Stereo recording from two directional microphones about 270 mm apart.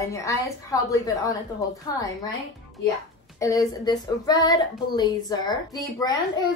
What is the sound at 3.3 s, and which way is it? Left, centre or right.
A woman's voice, centre.